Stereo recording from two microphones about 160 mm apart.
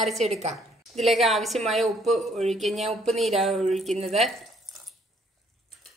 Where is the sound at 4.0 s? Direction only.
40° right (ahead or behind).